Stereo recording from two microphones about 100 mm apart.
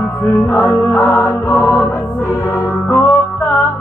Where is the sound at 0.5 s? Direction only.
20° left (ahead or behind).